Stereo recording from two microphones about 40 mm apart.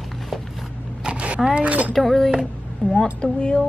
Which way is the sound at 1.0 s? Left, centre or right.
Right.